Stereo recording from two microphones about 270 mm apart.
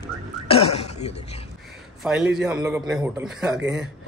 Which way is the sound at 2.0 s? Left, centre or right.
Centre.